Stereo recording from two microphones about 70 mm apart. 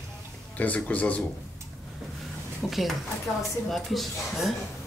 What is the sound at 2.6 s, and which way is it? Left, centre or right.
A woman's voice, centre.